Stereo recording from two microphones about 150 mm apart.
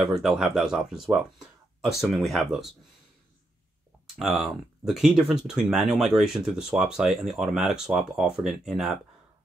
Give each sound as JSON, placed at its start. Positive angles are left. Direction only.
{"t": 0.0, "sound": "speech", "side_deg": 0}
{"t": 4.2, "sound": "speech", "side_deg": 0}